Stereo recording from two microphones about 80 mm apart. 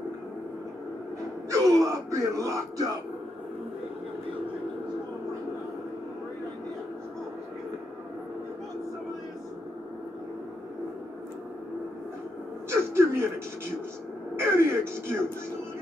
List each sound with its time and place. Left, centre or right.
1.5 s speech: right
12.6 s a sound: right
14.4 s music: right